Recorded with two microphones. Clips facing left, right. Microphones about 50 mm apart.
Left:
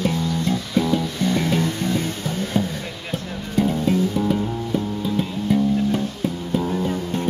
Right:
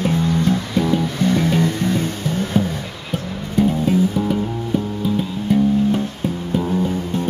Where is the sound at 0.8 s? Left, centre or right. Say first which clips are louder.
Even; right.